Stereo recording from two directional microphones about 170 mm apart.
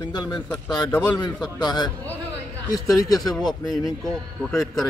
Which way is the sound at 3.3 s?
Centre (ahead or behind).